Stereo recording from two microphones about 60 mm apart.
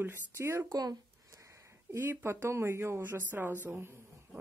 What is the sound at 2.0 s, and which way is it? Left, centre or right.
Speech, right.